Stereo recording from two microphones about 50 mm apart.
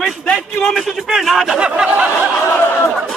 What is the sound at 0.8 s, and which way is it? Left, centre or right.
Speech, centre.